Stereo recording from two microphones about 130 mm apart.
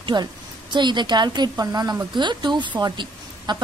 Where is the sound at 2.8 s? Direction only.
35° right (ahead or behind).